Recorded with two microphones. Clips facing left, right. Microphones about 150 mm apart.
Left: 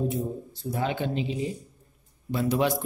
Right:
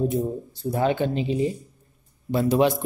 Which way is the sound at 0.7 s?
45° right (ahead or behind).